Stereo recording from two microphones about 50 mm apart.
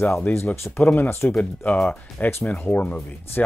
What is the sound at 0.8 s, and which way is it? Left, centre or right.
Speech, left.